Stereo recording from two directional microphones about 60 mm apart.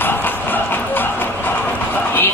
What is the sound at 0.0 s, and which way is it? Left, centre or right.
Music, left.